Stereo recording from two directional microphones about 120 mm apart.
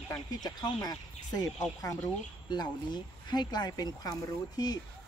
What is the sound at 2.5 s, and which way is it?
Speech, 35° left (ahead or behind).